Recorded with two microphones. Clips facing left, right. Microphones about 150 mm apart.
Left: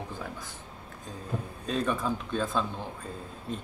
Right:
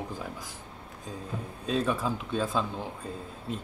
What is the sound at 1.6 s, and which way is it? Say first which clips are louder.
Speech: right 1 dB; 5° right (ahead or behind).